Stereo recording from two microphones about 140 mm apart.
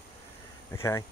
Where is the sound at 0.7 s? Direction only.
25° left (ahead or behind).